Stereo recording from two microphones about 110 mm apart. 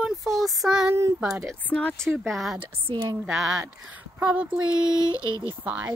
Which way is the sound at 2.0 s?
Centre (ahead or behind).